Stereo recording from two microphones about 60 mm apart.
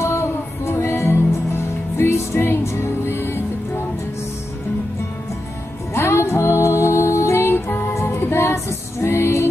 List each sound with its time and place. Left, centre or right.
0.0 s music: left
5.9 s music: left